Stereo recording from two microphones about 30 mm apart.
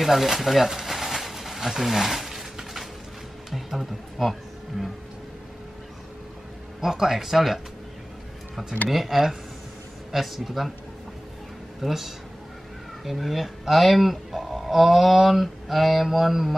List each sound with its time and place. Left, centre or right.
0.0 s a sound: centre
3.5 s speech: centre
6.8 s speech: centre
8.8 s speech: centre
10.1 s mantra: centre
11.8 s speech: centre
13.0 s mantra: centre